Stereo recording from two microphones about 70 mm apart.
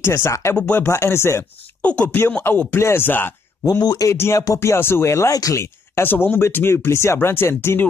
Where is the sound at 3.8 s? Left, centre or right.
Left.